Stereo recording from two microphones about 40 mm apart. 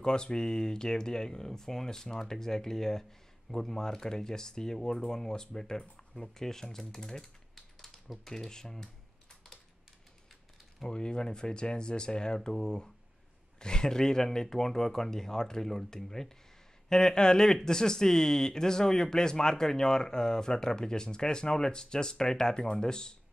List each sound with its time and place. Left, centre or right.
0.0 s speech: left
8.3 s typing: centre
10.9 s speech: left